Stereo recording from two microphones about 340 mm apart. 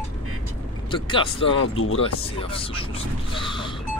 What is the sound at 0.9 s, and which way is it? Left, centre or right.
Speech, centre.